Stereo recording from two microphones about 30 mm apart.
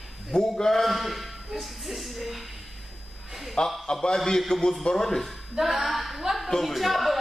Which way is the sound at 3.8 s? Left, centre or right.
Left.